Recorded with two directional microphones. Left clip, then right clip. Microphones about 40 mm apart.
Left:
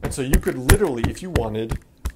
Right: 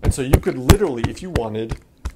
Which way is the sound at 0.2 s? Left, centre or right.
Right.